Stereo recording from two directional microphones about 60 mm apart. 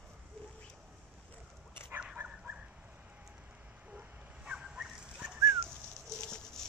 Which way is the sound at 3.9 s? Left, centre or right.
Centre.